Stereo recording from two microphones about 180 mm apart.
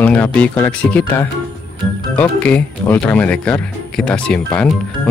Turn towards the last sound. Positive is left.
turn(degrees=5)  # may be behind; listen again after turning